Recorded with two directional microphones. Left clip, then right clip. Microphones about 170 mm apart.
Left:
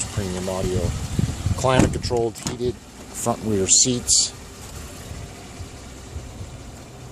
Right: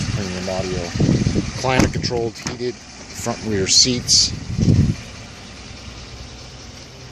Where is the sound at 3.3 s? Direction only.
5° left (ahead or behind).